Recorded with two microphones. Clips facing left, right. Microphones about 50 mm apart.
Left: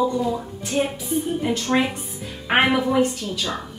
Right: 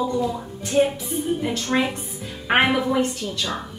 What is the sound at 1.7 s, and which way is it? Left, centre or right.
A woman's voice, centre.